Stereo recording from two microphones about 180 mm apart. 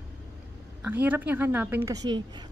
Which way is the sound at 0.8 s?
10° right (ahead or behind).